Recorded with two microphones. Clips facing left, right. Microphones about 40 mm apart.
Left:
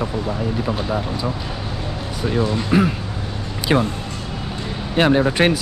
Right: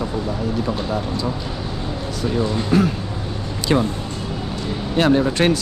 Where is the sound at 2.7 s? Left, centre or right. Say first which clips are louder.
Even; centre.